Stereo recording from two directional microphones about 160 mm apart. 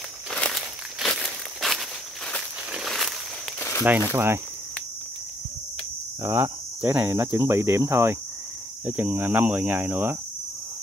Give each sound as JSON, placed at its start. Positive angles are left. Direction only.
{"t": 0.3, "sound": "a sound", "side_deg": 0}
{"t": 3.8, "sound": "speech", "side_deg": -10}
{"t": 6.2, "sound": "speech", "side_deg": -15}